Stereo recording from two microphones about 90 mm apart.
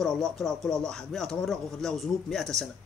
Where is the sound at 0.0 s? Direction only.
5° left (ahead or behind).